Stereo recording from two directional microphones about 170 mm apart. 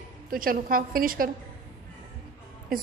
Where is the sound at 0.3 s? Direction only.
55° right (ahead or behind).